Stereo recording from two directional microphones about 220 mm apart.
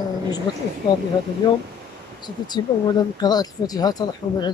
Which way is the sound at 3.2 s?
15° left (ahead or behind).